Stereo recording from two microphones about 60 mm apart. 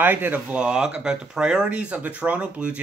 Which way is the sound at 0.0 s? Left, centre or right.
Right.